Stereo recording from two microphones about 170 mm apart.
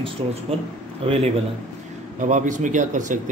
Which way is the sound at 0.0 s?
35° right (ahead or behind).